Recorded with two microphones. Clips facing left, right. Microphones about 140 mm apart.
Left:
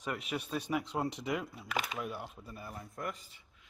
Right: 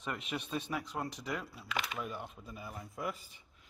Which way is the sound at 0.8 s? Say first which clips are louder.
Left 4 dB; 25° left (ahead or behind).